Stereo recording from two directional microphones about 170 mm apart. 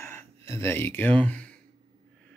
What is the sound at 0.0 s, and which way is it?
Speech, 15° left (ahead or behind).